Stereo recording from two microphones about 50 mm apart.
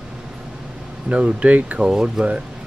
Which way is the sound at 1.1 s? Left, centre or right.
Right.